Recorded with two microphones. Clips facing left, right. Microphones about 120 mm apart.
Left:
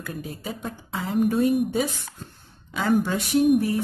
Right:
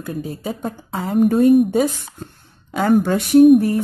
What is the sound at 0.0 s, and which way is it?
A woman's voice, 30° right (ahead or behind).